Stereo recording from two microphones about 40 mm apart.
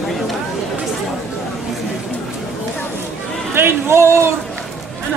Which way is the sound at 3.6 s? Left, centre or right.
Right.